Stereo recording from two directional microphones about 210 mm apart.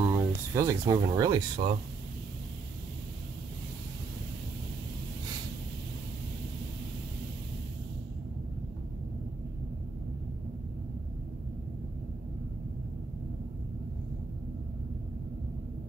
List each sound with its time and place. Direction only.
0.1 s speech: 10° right (ahead or behind)